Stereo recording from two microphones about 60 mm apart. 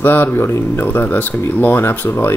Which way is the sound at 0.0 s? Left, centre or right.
Left.